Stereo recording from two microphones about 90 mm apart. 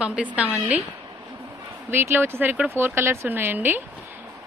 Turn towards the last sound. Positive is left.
turn(degrees=-20)  # may be behind; listen again after turning